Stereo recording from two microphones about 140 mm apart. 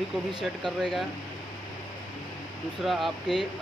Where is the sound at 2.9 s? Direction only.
Centre (ahead or behind).